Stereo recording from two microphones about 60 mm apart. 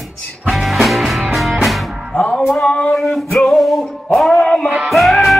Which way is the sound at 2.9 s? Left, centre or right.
Centre.